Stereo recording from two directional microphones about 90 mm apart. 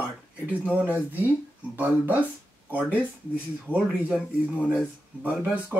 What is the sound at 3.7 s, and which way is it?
Speech, 20° left (ahead or behind).